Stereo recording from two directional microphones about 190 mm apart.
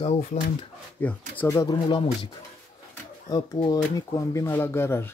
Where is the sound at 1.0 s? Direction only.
10° left (ahead or behind).